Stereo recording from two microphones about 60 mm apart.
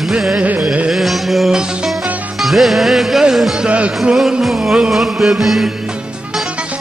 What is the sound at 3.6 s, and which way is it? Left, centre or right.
Music, centre.